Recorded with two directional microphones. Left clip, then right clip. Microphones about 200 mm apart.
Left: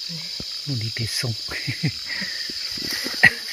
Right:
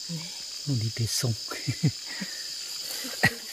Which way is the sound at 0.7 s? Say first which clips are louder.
Left 3 dB; 5° right (ahead or behind).